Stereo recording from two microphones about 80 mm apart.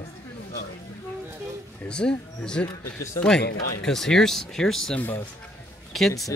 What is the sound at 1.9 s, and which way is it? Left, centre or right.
Speech, centre.